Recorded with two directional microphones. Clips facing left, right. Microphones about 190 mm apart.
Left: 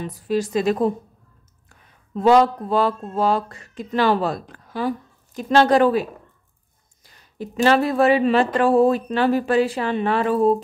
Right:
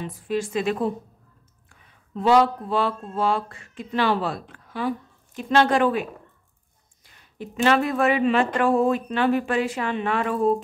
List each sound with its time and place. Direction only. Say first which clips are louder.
0.0 s speech: left 4 dB; 40° left (ahead or behind)